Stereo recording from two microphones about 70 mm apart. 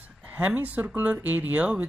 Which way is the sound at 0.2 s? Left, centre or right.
Right.